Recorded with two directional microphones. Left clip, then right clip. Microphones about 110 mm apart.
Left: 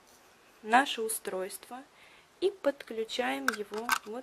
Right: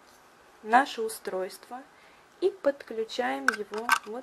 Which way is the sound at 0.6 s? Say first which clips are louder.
Right 3 dB; 25° left (ahead or behind).